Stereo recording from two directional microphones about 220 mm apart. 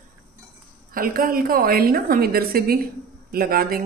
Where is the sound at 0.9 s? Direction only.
40° right (ahead or behind).